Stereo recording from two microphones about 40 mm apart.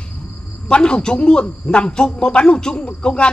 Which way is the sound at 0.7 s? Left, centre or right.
Left.